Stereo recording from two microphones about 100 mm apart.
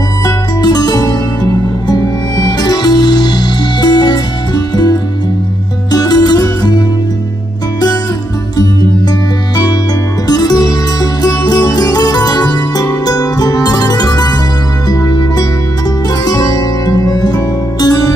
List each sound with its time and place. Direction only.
0.2 s music: 45° left (ahead or behind)
10.2 s music: 40° left (ahead or behind)